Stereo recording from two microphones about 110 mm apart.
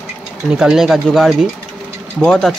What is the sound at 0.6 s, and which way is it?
Speech, 5° right (ahead or behind).